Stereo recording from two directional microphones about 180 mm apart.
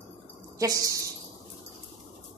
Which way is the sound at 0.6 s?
20° right (ahead or behind).